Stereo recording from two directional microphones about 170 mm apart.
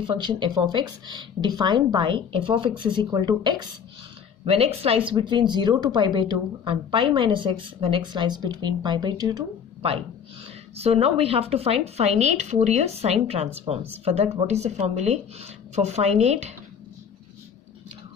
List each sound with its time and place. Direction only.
0.0 s speech: 25° right (ahead or behind)
4.5 s speech: 35° right (ahead or behind)
10.8 s a woman's voice: 35° right (ahead or behind)